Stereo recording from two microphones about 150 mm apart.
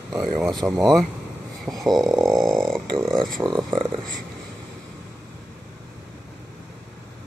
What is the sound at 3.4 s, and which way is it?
Speech, 30° right (ahead or behind).